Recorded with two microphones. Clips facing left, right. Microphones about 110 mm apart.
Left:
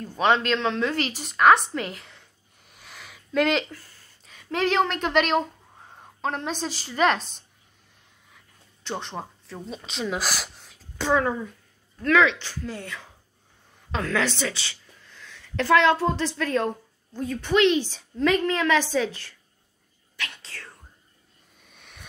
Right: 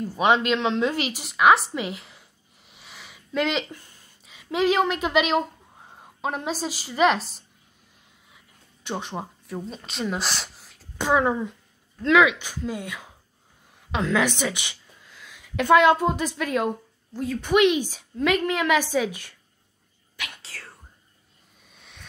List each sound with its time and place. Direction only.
0.0 s a woman's voice: 10° right (ahead or behind)
3.7 s a woman's voice: 20° right (ahead or behind); by 7.4 s centre (ahead or behind)
8.8 s speech: 10° right (ahead or behind)
11.0 s a woman's voice: 15° right (ahead or behind)
17.4 s a woman's voice: 15° right (ahead or behind)
20.2 s whispering: 10° right (ahead or behind)
21.6 s vehicle: centre (ahead or behind)